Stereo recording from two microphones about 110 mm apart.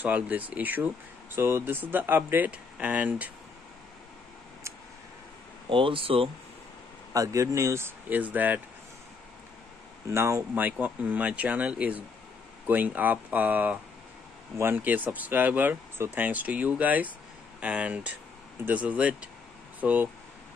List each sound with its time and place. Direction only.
0.0 s speech: 15° right (ahead or behind)
5.7 s speech: 50° right (ahead or behind)
7.2 s speech: 30° right (ahead or behind)
10.0 s speech: 25° right (ahead or behind)